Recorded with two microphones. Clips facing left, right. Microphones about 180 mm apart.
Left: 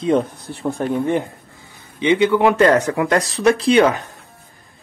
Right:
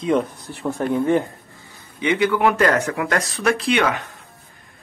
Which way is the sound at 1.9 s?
25° left (ahead or behind).